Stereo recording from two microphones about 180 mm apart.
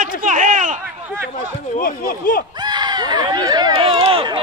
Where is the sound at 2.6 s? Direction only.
25° right (ahead or behind).